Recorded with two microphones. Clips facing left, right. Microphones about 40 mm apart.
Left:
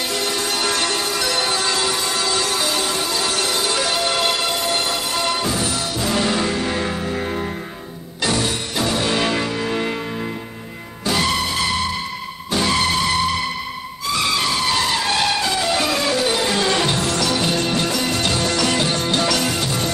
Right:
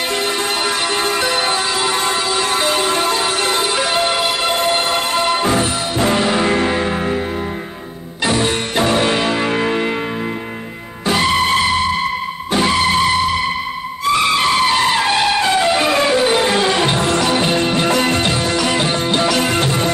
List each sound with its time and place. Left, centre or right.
0.9 s music: right
6.1 s music: right
8.5 s music: right
9.7 s church bell: centre
11.1 s music: right
11.6 s vehicle: right
14.0 s music: right
17.8 s music: right
18.2 s music: centre
19.5 s music: right